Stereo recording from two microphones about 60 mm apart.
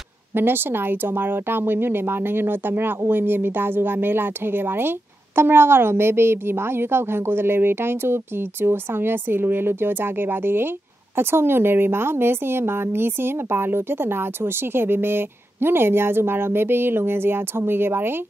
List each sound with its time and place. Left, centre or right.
0.3 s a woman's voice: right